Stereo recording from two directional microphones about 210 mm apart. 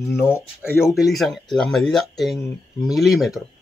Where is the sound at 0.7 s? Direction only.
Centre (ahead or behind).